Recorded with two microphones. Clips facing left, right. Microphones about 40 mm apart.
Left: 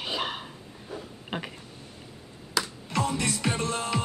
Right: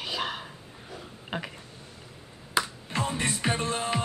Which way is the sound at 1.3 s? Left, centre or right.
Centre.